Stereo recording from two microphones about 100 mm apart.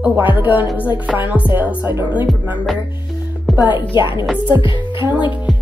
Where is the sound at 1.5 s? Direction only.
20° right (ahead or behind).